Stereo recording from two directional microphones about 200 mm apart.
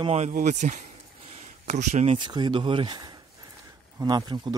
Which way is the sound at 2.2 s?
20° right (ahead or behind).